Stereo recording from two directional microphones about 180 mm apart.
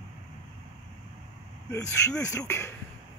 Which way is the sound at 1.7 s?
15° left (ahead or behind).